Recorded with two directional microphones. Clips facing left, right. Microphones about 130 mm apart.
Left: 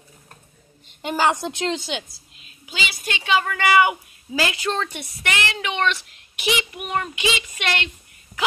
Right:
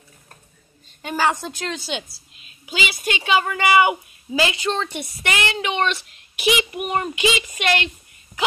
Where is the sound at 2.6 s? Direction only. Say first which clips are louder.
Right 4 dB; 15° right (ahead or behind).